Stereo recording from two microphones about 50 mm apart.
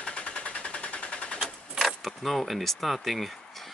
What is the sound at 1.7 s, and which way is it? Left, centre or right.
Keys jangling, centre.